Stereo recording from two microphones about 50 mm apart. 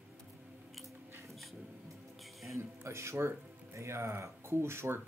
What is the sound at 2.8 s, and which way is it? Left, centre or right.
Speech, right.